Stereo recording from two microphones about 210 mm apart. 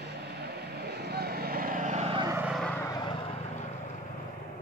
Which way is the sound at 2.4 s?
Centre (ahead or behind).